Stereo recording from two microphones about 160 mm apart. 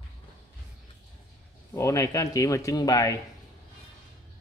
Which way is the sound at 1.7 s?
20° left (ahead or behind).